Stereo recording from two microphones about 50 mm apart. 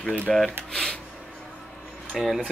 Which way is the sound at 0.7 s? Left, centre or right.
Centre.